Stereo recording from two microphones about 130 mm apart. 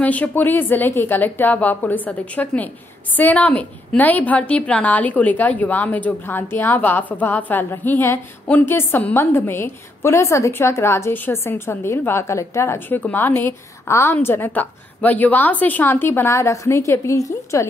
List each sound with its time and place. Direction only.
0.0 s a woman's voice: 10° left (ahead or behind)